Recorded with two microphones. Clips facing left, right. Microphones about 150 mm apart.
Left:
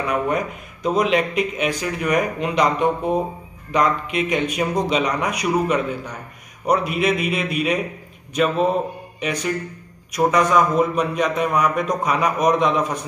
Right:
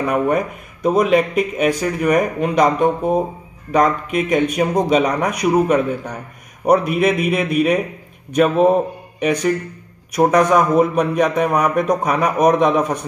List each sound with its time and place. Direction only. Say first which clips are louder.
0.0 s a man's voice: right 4 dB; 50° right (ahead or behind)